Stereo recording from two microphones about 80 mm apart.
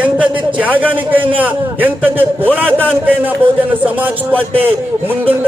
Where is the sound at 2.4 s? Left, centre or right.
Centre.